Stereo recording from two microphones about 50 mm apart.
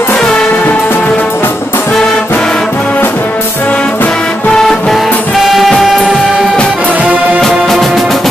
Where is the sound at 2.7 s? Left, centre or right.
Left.